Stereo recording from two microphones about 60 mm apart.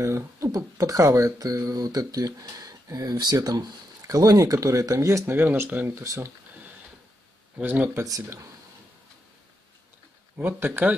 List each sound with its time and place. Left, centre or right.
0.0 s speech: right
0.5 s speech: right
4.1 s speech: right
5.2 s speech: right
5.9 s speech: right
7.6 s speech: right
8.0 s speech: right
10.3 s speech: right